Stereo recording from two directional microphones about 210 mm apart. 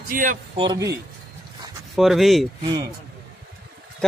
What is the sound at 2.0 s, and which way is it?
Speech, centre (ahead or behind).